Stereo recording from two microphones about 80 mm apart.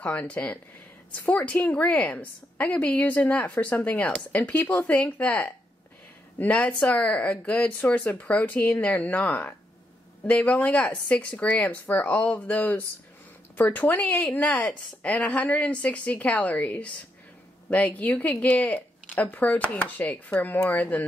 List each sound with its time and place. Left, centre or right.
0.0 s a woman's voice: centre
6.6 s a woman's voice: centre